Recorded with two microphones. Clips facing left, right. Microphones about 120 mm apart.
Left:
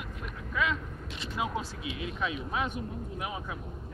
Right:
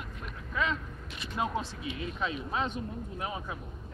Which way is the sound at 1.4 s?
5° left (ahead or behind).